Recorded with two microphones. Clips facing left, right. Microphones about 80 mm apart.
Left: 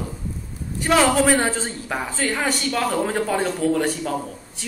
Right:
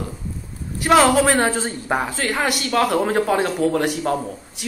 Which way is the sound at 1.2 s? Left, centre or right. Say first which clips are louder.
Right 1 dB; centre.